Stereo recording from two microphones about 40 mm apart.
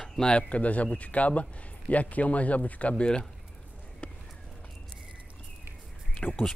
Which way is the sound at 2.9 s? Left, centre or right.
Left.